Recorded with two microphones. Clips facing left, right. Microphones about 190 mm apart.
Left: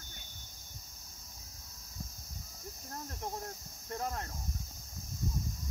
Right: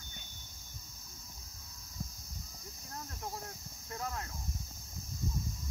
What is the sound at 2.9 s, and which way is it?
Cricket, 30° left (ahead or behind).